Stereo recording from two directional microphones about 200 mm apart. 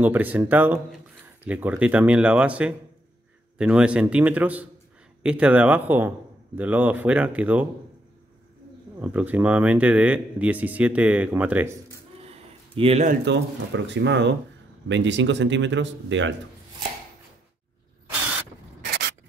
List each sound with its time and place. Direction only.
0.0 s speech: 10° right (ahead or behind)
9.0 s speech: 10° right (ahead or behind)
12.3 s a sound: 30° right (ahead or behind)
13.2 s speech: 60° right (ahead or behind)